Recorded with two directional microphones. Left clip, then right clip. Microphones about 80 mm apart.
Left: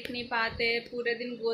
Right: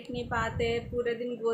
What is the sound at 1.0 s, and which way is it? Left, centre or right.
Speech, centre.